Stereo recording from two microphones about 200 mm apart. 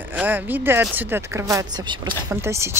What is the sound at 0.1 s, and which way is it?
Speech, 10° right (ahead or behind).